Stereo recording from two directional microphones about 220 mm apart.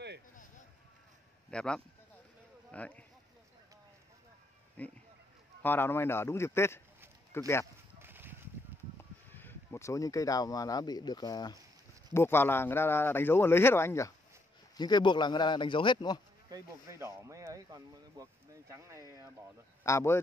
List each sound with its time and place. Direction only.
1.5 s speech: 5° left (ahead or behind)
4.8 s speech: 5° left (ahead or behind)
8.0 s a sound: 10° right (ahead or behind)
9.3 s a man's voice: 10° left (ahead or behind)
16.4 s speech: 15° right (ahead or behind)
19.8 s a man's voice: 10° left (ahead or behind)